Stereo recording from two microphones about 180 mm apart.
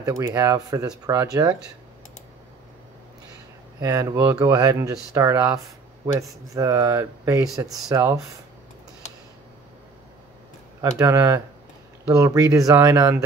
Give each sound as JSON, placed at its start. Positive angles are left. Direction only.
{"t": 0.0, "sound": "speech", "side_deg": -20}
{"t": 3.8, "sound": "speech", "side_deg": -20}
{"t": 10.8, "sound": "speech", "side_deg": -15}